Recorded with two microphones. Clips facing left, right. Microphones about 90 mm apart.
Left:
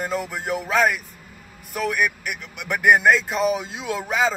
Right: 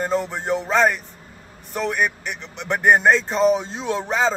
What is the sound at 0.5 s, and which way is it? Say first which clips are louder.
Speech: right 2 dB; 5° left (ahead or behind).